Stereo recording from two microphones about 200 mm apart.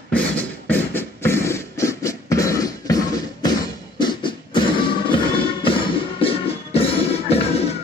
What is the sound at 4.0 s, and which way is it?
Music, 25° left (ahead or behind).